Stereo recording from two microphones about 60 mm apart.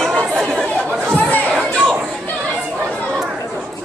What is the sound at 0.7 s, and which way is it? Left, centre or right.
Chatter, centre.